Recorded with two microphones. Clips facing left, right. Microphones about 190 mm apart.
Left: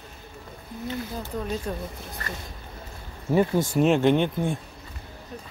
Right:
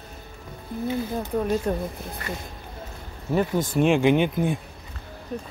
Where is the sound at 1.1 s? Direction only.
55° right (ahead or behind).